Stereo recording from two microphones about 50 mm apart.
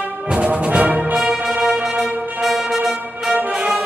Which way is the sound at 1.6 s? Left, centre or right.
Centre.